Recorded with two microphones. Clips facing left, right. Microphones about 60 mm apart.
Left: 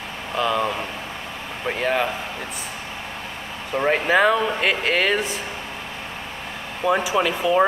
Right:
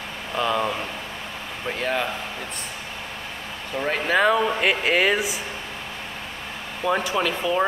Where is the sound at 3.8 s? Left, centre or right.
Centre.